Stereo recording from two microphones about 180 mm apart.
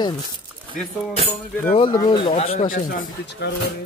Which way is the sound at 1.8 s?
25° left (ahead or behind).